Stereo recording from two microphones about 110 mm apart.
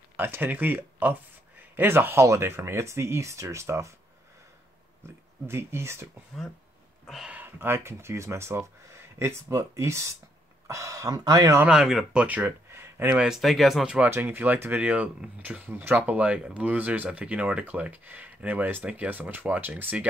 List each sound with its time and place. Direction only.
0.2 s speech: 15° right (ahead or behind)
5.5 s speech: 20° right (ahead or behind)
7.2 s speech: 15° right (ahead or behind); by 11.6 s 35° right (ahead or behind)
11.6 s speech: 5° right (ahead or behind); by 13.1 s 20° right (ahead or behind)
13.1 s speech: 5° right (ahead or behind)
13.9 s speech: 15° right (ahead or behind)